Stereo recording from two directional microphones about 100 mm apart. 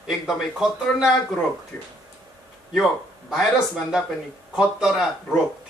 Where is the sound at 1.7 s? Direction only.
15° left (ahead or behind).